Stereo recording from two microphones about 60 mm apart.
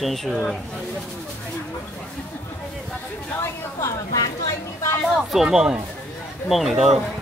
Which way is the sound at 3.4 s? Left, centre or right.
Left.